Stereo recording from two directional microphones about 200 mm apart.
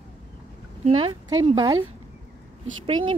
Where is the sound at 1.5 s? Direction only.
20° right (ahead or behind).